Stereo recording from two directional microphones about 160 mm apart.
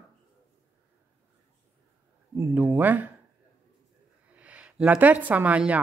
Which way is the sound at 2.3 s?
15° right (ahead or behind).